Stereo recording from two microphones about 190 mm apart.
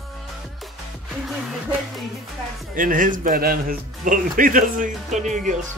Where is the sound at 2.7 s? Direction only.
45° right (ahead or behind).